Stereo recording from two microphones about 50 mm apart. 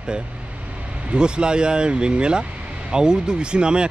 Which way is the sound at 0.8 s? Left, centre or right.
Right.